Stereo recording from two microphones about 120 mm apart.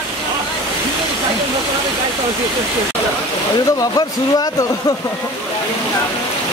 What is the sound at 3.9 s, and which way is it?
A man's voice, 30° left (ahead or behind).